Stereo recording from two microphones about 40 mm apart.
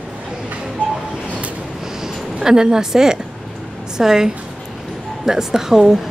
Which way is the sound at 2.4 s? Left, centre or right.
Centre.